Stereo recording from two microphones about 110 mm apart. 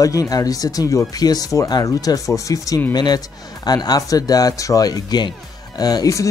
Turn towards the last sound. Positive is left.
turn(degrees=35)  # may be behind; listen again after turning